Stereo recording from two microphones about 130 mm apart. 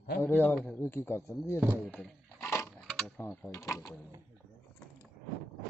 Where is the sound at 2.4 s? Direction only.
20° left (ahead or behind).